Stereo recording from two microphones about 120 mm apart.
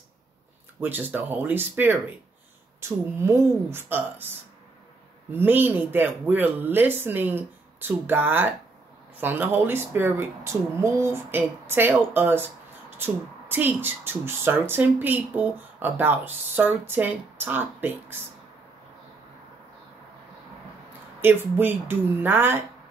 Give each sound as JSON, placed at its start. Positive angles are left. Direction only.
{"t": 0.7, "sound": "a woman's voice", "side_deg": -15}
{"t": 5.3, "sound": "speech", "side_deg": -15}
{"t": 21.2, "sound": "speech", "side_deg": -15}